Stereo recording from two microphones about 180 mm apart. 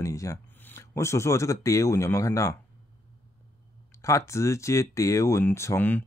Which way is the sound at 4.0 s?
15° left (ahead or behind).